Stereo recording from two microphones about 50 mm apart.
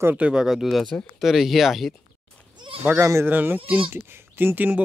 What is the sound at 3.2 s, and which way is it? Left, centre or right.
Speech, right.